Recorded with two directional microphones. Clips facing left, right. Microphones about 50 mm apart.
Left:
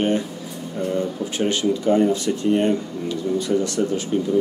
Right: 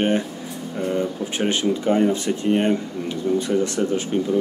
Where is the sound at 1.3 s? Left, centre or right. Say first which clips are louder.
Left 1 dB; right.